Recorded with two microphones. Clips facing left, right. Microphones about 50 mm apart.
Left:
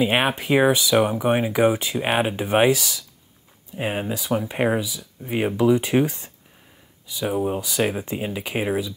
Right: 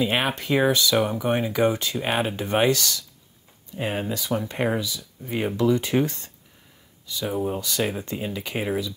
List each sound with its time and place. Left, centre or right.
0.0 s speech: centre